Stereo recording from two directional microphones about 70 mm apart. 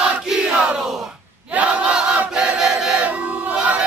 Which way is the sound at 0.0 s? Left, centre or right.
Centre.